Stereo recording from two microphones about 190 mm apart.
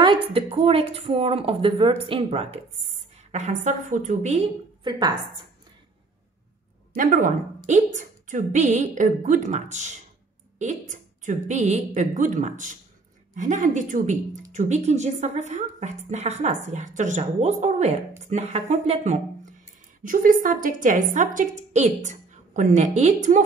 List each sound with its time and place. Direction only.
0.0 s a woman's voice: 25° right (ahead or behind)
4.8 s a woman's voice: 25° right (ahead or behind)
6.9 s a woman's voice: 45° right (ahead or behind)
20.0 s a woman's voice: 45° right (ahead or behind)